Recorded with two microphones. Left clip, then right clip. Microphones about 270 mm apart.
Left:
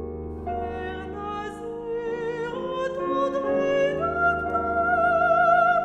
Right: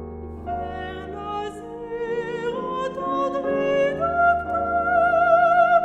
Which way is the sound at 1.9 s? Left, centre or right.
Right.